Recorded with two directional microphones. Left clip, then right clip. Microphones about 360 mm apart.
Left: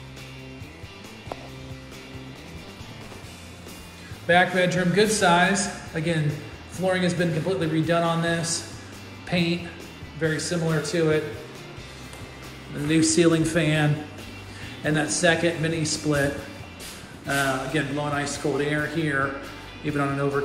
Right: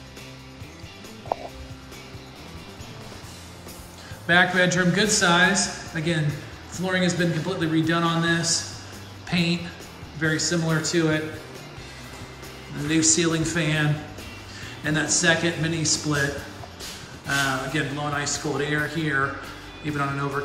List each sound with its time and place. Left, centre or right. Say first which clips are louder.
4.3 s a man's voice: right 1 dB; centre
12.8 s a man's voice: left 2 dB; centre
17.3 s a man's voice: even; centre